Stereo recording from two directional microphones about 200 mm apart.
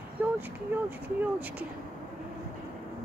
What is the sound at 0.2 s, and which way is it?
Speech, 10° right (ahead or behind).